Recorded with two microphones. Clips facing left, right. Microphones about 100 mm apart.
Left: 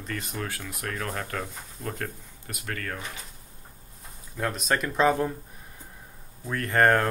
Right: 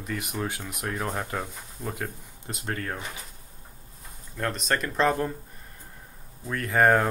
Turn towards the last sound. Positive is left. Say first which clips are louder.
# right 1 dB
turn(degrees=-5)  # may be behind; listen again after turning